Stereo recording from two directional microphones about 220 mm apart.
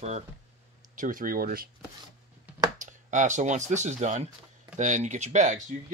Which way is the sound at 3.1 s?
35° right (ahead or behind).